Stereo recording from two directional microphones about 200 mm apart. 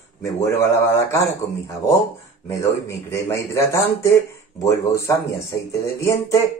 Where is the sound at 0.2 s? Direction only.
15° left (ahead or behind).